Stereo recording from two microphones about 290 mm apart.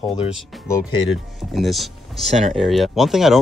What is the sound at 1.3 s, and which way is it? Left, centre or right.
Speech, centre.